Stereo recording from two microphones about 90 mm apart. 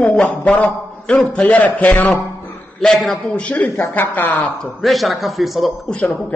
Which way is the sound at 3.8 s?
20° left (ahead or behind).